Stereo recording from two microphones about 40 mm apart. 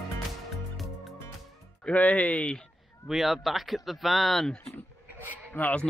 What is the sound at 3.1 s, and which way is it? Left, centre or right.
Speech, centre.